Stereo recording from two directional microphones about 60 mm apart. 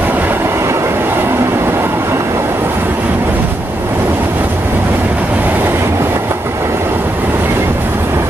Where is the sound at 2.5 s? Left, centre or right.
Right.